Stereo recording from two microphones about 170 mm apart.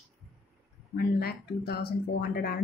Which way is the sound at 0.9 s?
65° left (ahead or behind).